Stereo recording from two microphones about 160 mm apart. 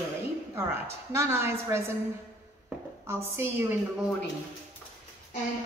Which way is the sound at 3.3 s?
15° right (ahead or behind).